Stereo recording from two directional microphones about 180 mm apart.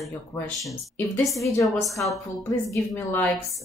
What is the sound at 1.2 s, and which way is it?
Speech, 15° left (ahead or behind).